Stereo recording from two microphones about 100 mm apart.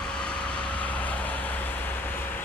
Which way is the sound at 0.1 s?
10° left (ahead or behind).